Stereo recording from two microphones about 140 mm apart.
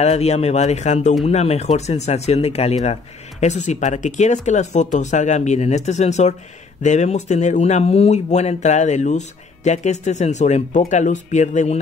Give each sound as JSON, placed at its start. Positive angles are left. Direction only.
{"t": 0.0, "sound": "speech", "side_deg": 50}